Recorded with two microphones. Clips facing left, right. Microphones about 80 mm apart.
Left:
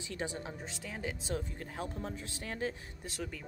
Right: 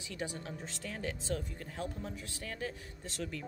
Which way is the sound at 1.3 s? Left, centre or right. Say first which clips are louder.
Even; left.